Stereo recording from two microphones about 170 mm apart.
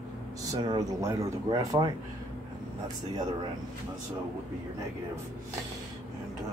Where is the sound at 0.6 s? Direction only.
25° right (ahead or behind).